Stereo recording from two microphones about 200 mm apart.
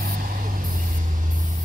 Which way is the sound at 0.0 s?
45° right (ahead or behind).